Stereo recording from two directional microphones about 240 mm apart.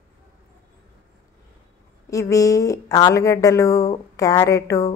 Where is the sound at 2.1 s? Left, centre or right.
Centre.